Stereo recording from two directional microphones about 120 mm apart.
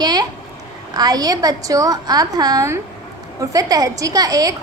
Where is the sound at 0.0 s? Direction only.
35° right (ahead or behind).